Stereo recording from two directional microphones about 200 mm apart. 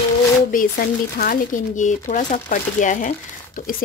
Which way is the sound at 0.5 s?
45° left (ahead or behind).